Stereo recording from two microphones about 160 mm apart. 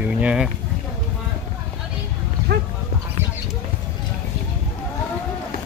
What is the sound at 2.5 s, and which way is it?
Dog, 90° right.